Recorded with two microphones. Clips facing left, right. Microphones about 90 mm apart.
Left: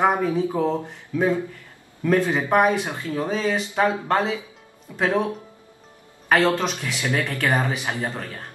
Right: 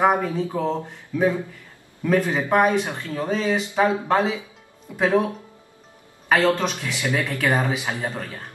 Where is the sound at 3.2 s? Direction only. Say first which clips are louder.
Right 2 dB; centre (ahead or behind).